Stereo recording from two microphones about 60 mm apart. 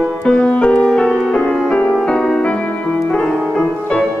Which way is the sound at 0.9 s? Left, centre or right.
Centre.